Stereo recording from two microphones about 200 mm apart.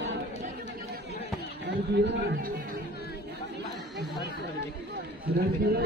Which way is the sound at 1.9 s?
60° right (ahead or behind).